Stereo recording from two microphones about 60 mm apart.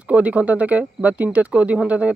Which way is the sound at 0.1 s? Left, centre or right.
Right.